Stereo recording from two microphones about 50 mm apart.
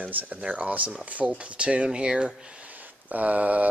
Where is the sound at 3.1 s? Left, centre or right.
Right.